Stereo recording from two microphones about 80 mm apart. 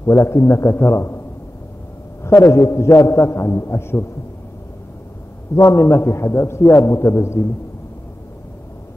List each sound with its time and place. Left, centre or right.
0.0 s a man's voice: left
2.2 s a man's voice: left
5.5 s a man's voice: left